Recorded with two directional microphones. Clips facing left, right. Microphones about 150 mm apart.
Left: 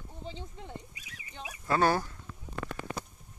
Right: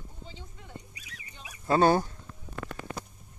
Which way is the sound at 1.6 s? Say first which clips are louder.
Right 4 dB; 25° right (ahead or behind).